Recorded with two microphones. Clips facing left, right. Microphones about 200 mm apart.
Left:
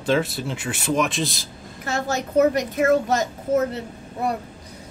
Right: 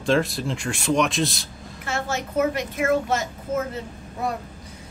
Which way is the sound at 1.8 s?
40° left (ahead or behind).